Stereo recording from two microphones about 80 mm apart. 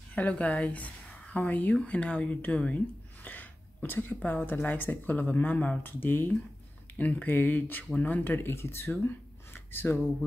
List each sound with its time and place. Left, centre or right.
0.1 s speech: centre